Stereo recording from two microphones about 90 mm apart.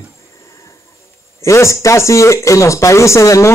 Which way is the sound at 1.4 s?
35° left (ahead or behind).